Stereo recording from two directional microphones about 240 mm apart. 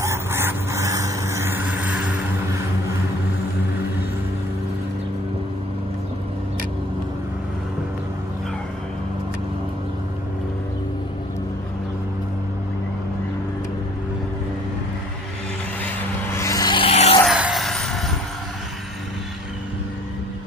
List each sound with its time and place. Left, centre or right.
0.0 s vehicle: centre
16.3 s vehicle: centre
17.2 s a sound: centre